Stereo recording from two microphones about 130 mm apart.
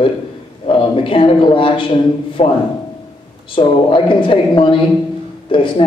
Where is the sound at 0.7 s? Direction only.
45° left (ahead or behind).